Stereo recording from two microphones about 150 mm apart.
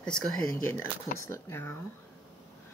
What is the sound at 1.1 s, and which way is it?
Speech, 20° left (ahead or behind).